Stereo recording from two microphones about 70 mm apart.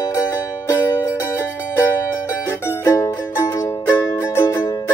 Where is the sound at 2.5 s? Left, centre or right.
Left.